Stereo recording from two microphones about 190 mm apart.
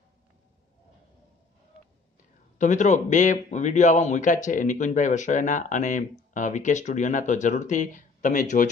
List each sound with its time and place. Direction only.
2.6 s a man's voice: 40° left (ahead or behind)